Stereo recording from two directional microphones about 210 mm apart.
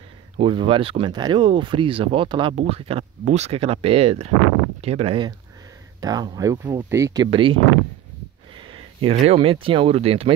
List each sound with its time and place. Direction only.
0.4 s speech: 25° right (ahead or behind)